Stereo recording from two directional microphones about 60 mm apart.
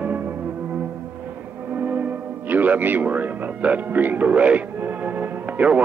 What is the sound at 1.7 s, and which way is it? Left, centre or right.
Music, right.